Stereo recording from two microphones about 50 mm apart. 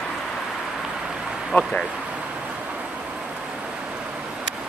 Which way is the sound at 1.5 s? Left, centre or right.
Left.